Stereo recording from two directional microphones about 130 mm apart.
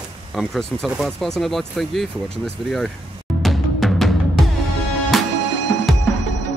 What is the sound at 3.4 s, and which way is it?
Music, centre (ahead or behind).